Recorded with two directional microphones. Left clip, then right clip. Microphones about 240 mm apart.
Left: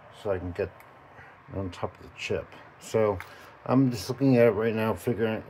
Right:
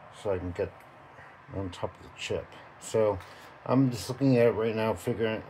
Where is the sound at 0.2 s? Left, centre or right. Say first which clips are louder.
Left 1 dB; centre.